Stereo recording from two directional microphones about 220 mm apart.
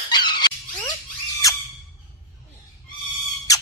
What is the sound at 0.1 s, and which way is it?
Squeak, 20° left (ahead or behind).